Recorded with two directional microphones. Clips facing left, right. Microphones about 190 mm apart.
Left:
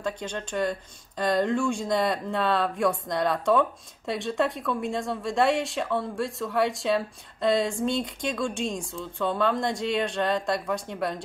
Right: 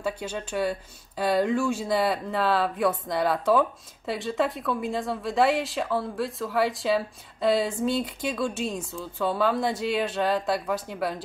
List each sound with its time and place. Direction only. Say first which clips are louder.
0.0 s speech: right 1 dB; 5° right (ahead or behind)